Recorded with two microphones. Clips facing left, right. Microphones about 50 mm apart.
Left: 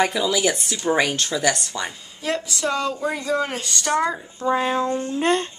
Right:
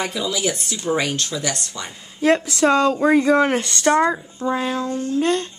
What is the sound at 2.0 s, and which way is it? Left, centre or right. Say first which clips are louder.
Speech: right 14 dB; right.